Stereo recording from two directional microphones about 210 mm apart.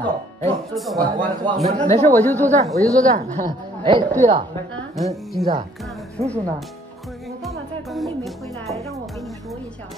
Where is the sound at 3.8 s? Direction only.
20° right (ahead or behind).